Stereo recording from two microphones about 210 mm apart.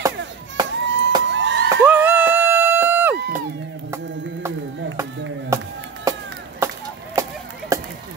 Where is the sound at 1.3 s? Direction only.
60° right (ahead or behind).